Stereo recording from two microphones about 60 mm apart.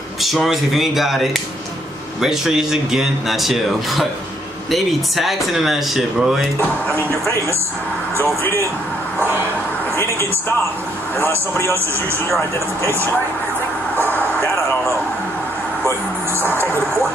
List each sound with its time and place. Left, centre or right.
0.2 s speech: centre
11.1 s a man's voice: left
14.1 s a sound: left
16.3 s music: right